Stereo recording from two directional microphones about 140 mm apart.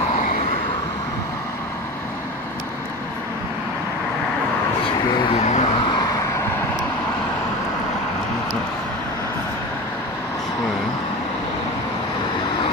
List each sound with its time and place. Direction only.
5.2 s vehicle: 50° left (ahead or behind)
5.9 s vehicle: 30° left (ahead or behind)